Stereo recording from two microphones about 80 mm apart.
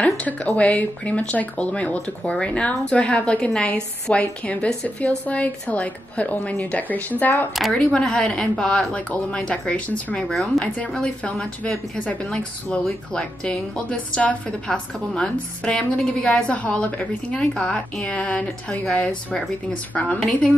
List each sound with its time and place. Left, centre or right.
0.0 s speech: centre